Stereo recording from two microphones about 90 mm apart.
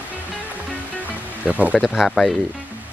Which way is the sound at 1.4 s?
15° right (ahead or behind).